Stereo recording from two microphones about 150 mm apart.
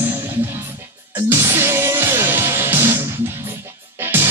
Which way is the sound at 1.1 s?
15° right (ahead or behind).